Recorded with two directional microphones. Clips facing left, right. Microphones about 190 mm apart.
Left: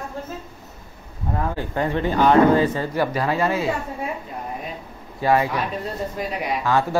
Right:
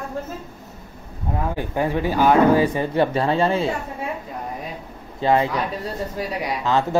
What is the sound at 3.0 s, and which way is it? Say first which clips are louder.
Speech: right 3 dB; 30° right (ahead or behind).